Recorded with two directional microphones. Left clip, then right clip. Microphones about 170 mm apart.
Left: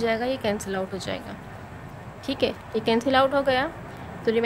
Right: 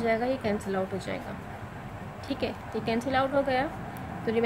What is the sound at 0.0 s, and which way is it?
A woman's voice, 50° left (ahead or behind).